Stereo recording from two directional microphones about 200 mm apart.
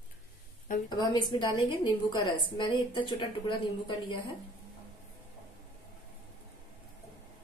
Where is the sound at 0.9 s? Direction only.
20° left (ahead or behind).